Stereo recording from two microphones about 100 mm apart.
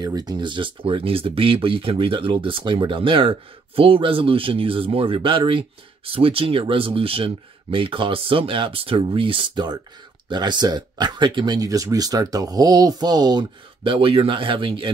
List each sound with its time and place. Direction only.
0.0 s speech: 40° right (ahead or behind); by 14.9 s 60° right (ahead or behind)